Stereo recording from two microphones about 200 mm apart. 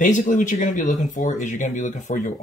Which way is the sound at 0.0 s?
40° left (ahead or behind).